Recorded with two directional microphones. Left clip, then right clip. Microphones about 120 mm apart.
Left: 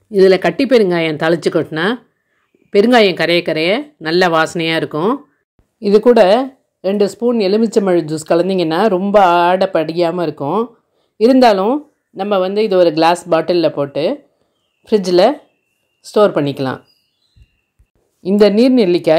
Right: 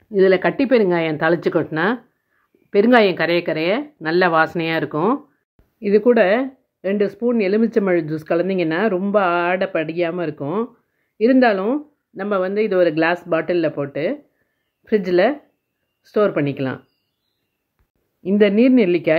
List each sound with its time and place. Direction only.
0.1 s speech: 25° left (ahead or behind)
18.2 s speech: 30° left (ahead or behind)